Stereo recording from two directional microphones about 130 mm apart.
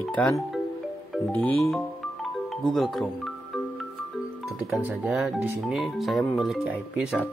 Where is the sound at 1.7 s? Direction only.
Centre (ahead or behind).